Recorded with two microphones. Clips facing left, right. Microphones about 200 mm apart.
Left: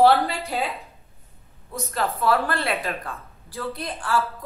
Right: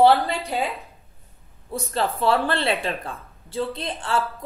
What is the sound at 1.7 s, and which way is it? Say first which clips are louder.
Speech: right 2 dB; 30° right (ahead or behind).